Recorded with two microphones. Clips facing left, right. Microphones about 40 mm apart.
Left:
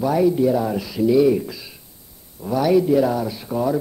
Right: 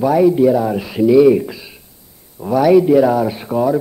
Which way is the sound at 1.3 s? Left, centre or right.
Right.